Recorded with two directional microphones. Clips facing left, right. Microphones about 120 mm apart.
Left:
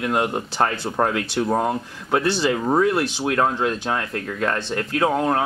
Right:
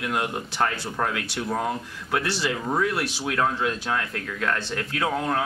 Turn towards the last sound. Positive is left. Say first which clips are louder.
# left 5 dB
turn(degrees=30)  # may be behind; listen again after turning